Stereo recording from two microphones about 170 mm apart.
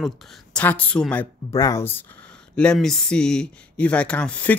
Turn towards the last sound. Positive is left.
turn(degrees=10)  # may be behind; listen again after turning